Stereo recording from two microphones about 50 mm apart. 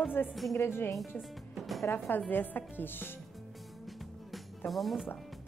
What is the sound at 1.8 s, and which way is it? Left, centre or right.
A woman's voice, left.